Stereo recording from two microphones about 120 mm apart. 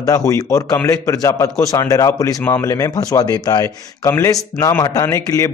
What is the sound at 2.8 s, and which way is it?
Speech, 30° left (ahead or behind).